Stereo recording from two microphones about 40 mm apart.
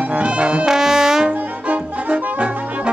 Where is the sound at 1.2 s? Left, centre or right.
Right.